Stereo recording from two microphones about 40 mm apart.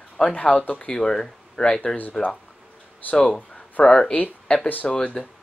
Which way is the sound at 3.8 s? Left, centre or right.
Left.